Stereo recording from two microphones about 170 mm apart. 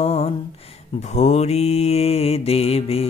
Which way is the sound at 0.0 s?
35° left (ahead or behind).